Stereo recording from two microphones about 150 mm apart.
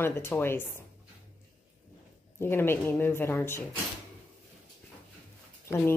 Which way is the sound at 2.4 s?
15° left (ahead or behind).